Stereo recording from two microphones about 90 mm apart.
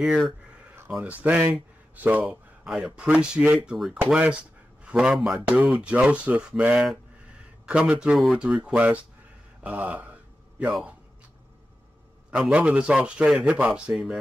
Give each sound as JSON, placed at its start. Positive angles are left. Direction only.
{"t": 0.0, "sound": "speech", "side_deg": 0}
{"t": 1.0, "sound": "a man's voice", "side_deg": -15}
{"t": 8.2, "sound": "speech", "side_deg": -5}
{"t": 8.5, "sound": "speech", "side_deg": -15}
{"t": 9.6, "sound": "a sound", "side_deg": -15}
{"t": 12.3, "sound": "speech", "side_deg": -15}